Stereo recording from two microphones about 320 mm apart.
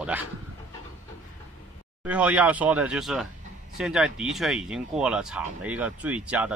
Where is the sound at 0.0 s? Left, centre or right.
Centre.